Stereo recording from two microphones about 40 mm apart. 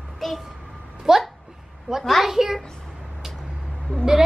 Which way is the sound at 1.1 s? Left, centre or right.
Centre.